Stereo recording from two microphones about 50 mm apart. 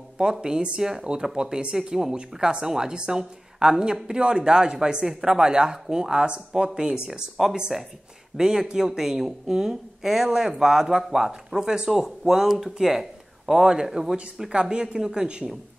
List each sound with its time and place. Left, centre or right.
0.2 s speech: centre
8.4 s speech: centre